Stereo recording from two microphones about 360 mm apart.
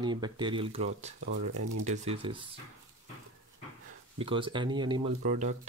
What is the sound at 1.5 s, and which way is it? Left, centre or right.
Speech, right.